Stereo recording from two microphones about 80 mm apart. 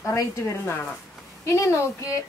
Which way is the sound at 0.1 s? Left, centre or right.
Left.